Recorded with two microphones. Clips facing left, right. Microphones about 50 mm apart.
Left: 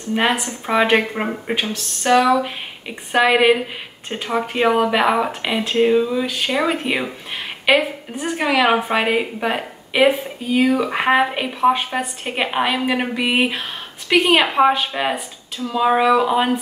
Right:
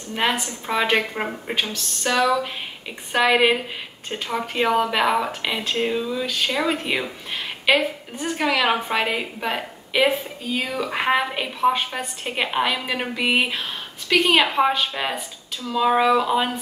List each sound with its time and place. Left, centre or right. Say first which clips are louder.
0.1 s speech: left 4 dB; centre
1.7 s a sound: left 7 dB; centre
3.1 s speech: left 3 dB; centre